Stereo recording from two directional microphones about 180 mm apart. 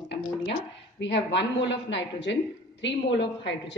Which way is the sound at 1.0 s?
80° left.